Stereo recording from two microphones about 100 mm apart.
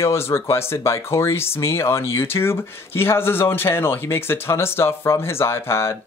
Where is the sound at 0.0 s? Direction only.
25° left (ahead or behind).